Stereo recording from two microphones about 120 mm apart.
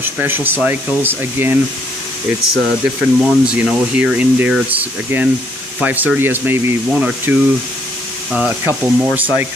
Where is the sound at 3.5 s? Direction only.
10° right (ahead or behind).